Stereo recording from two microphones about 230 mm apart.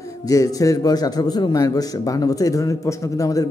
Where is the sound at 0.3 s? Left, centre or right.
Centre.